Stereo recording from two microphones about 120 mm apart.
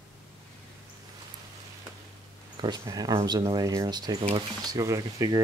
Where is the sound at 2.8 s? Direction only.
30° right (ahead or behind).